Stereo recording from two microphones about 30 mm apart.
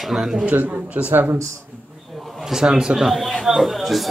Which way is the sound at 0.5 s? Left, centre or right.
Right.